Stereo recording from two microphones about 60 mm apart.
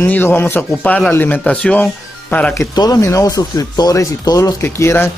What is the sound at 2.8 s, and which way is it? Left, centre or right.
Speech, left.